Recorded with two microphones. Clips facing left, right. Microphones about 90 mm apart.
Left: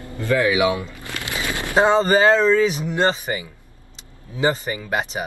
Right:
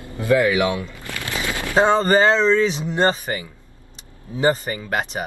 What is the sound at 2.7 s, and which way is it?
Speech, 30° right (ahead or behind).